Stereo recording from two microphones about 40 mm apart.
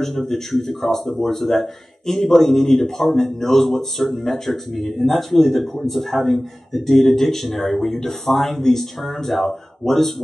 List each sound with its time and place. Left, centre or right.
0.0 s speech: centre